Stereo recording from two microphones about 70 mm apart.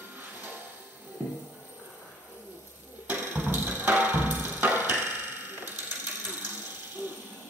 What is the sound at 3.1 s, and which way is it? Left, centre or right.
Music, right.